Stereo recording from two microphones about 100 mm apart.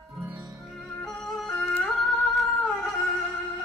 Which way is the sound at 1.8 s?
Centre (ahead or behind).